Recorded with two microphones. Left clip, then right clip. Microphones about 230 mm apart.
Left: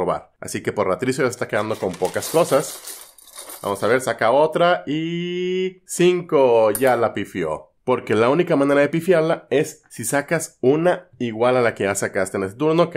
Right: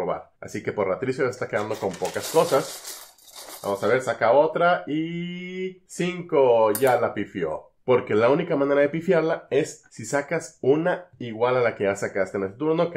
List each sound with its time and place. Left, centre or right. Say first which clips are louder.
0.0 s speech: left 5 dB; left
3.6 s speech: left 3 dB; left